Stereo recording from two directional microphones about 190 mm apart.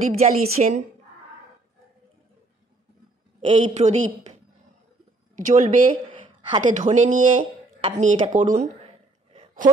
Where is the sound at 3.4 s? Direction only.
35° right (ahead or behind).